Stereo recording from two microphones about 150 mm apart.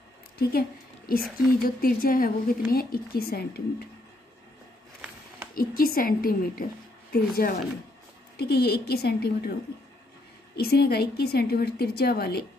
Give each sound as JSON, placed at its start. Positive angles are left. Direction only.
{"t": 0.4, "sound": "a woman's voice", "side_deg": 90}
{"t": 5.5, "sound": "a woman's voice", "side_deg": 75}
{"t": 10.5, "sound": "a woman's voice", "side_deg": 90}